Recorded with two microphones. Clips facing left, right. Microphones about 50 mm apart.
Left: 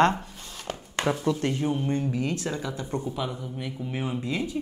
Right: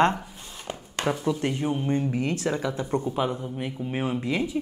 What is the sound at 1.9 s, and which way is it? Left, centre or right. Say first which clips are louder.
Speech: right 2 dB; right.